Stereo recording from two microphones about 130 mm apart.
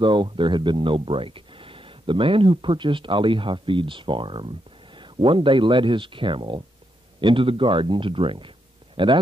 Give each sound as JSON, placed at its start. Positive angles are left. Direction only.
{"t": 0.0, "sound": "speech", "side_deg": -40}